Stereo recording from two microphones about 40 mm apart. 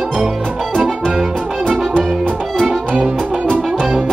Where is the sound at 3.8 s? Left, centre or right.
Right.